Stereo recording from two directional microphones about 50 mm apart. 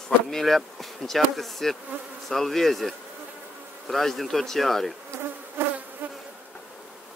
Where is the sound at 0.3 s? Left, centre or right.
Centre.